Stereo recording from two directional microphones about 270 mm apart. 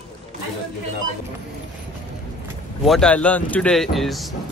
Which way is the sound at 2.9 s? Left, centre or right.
Centre.